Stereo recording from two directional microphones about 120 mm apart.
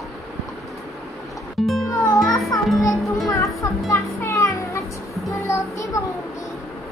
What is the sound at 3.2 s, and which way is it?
Music, 25° left (ahead or behind).